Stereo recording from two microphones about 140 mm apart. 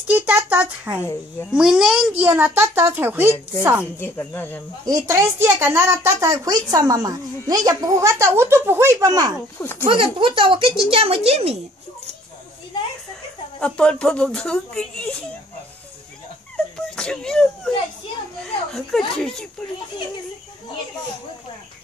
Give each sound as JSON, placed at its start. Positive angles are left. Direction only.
{"t": 0.1, "sound": "a child's voice", "side_deg": -10}
{"t": 4.0, "sound": "speech", "side_deg": 15}
{"t": 4.8, "sound": "a woman's voice", "side_deg": -25}
{"t": 9.6, "sound": "speech", "side_deg": 15}
{"t": 9.8, "sound": "speech", "side_deg": -40}
{"t": 13.6, "sound": "speech", "side_deg": 5}
{"t": 16.5, "sound": "whimper", "side_deg": 5}
{"t": 18.7, "sound": "speech", "side_deg": 0}